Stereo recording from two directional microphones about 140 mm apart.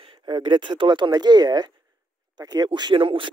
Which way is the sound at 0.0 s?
35° right (ahead or behind).